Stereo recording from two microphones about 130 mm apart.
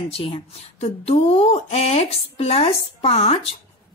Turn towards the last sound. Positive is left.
turn(degrees=50)  # may be behind; listen again after turning